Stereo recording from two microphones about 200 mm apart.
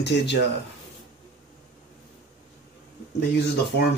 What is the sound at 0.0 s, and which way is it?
Speech, 55° left (ahead or behind).